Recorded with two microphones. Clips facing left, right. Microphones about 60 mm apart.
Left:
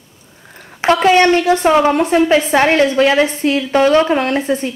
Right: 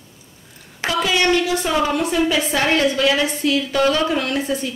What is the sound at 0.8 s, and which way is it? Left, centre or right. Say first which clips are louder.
A woman's voice: left 8 dB; left.